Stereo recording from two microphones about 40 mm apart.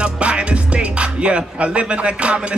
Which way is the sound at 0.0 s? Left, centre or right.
Right.